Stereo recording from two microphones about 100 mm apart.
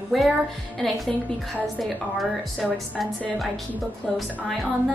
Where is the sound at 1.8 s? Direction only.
Centre (ahead or behind).